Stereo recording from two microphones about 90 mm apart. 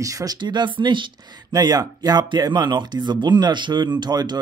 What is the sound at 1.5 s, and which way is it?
Speech, 45° right (ahead or behind).